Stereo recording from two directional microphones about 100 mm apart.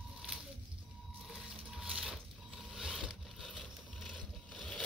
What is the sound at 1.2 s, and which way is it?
Mechanisms, 5° right (ahead or behind).